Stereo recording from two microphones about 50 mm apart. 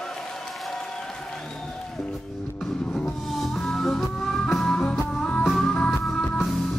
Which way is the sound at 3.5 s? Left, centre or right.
Centre.